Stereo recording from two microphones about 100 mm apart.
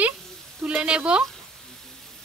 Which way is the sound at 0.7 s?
10° right (ahead or behind).